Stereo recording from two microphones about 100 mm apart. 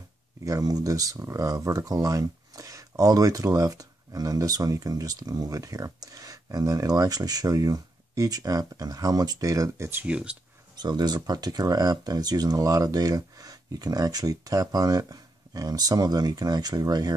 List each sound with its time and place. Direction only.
0.4 s speech: 35° right (ahead or behind)
10.0 s speech: 10° right (ahead or behind)
10.8 s speech: 45° right (ahead or behind)